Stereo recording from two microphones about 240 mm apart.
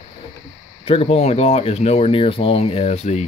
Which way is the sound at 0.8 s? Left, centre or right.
Left.